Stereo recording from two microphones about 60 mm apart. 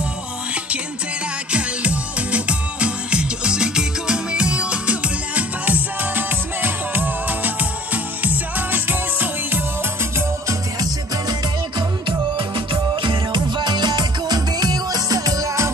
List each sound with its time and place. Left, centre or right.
1.5 s music: right
14.3 s music: right